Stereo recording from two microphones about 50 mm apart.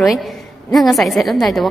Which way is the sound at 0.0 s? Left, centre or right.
Centre.